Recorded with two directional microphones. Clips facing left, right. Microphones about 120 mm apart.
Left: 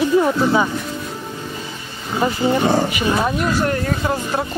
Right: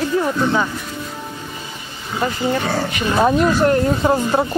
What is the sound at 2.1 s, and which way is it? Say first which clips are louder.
Speech: left 2 dB; 15° left (ahead or behind).